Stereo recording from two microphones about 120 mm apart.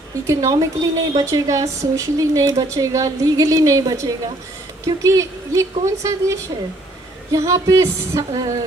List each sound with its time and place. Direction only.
0.3 s a woman's voice: 25° right (ahead or behind)